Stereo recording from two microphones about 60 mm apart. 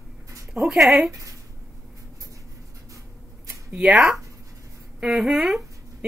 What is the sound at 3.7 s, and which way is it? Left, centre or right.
Speech, centre.